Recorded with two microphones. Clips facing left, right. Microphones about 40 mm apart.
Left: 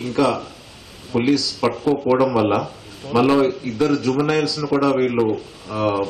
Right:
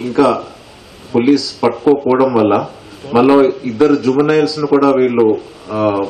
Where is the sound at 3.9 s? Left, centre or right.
Centre.